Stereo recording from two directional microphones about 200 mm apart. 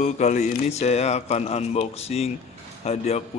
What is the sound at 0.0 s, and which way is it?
Speech, 35° left (ahead or behind).